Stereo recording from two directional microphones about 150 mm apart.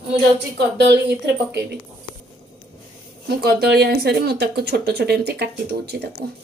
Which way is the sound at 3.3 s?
90° right.